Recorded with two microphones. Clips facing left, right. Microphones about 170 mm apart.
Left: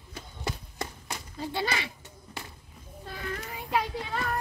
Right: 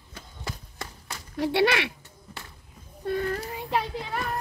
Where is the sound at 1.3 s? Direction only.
75° right (ahead or behind).